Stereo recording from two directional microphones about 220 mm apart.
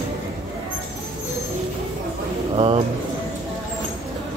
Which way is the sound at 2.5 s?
25° right (ahead or behind).